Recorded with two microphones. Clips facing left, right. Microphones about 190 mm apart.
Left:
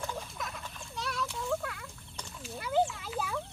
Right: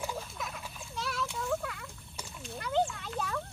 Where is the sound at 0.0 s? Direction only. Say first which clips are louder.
Right 1 dB; 5° right (ahead or behind).